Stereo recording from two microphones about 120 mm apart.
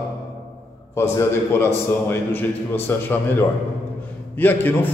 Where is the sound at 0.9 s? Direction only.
20° left (ahead or behind).